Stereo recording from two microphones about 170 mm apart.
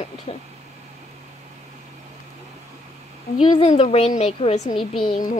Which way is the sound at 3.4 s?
35° left (ahead or behind).